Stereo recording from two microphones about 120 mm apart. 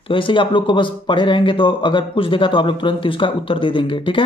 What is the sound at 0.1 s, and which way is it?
Speech, 45° left (ahead or behind).